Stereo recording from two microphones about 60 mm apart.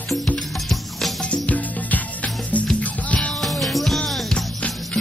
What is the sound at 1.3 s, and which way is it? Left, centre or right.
Music, left.